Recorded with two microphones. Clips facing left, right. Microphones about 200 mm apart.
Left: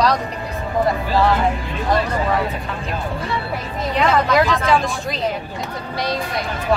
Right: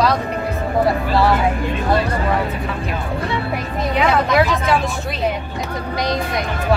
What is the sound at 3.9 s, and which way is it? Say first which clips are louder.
Speech: even; 5° right (ahead or behind).